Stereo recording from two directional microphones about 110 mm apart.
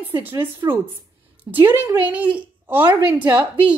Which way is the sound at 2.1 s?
10° right (ahead or behind).